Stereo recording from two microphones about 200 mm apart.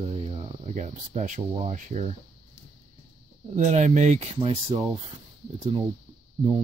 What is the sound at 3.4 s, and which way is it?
Speech, 35° right (ahead or behind).